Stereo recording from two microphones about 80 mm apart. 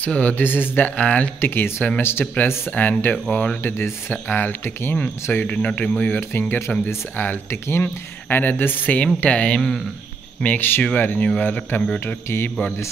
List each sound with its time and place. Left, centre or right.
0.0 s speech: centre
1.4 s speech: left
3.6 s a man's voice: left
7.6 s a man's voice: left